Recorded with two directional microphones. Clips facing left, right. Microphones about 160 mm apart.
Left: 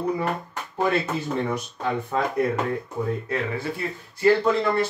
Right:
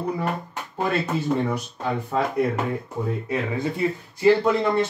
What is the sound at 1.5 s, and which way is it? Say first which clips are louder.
Speech: even; centre (ahead or behind).